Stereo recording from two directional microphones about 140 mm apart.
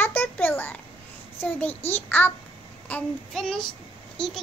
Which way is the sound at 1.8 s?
15° left (ahead or behind).